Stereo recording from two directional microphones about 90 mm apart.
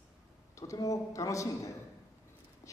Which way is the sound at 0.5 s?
35° left (ahead or behind).